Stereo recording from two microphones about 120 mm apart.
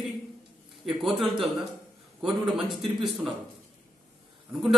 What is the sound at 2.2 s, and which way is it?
Speech, centre (ahead or behind).